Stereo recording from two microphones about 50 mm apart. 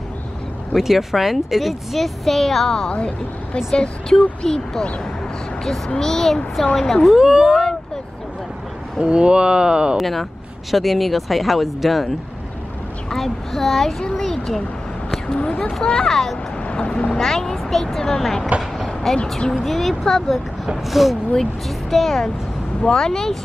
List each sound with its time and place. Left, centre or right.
0.7 s speech: centre
7.2 s speech: centre
9.0 s speech: centre
9.9 s speech: centre
13.1 s speech: centre
15.7 s speech: centre
16.6 s speech: centre
19.5 s speech: centre